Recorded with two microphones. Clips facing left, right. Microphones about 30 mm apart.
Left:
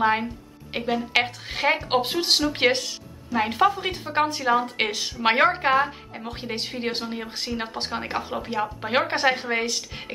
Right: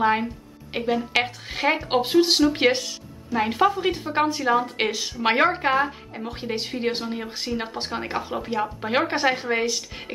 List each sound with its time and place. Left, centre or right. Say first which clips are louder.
0.0 s a woman's voice: right 1 dB; centre